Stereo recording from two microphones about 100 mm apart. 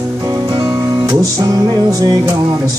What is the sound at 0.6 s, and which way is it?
Music, 40° right (ahead or behind).